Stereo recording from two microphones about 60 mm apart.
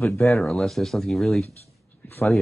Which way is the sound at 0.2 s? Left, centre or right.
Centre.